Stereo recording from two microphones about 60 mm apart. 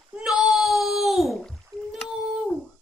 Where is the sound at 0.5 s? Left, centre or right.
Centre.